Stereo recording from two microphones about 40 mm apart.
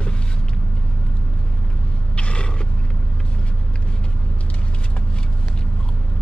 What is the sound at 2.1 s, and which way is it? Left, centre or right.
Mechanisms, left.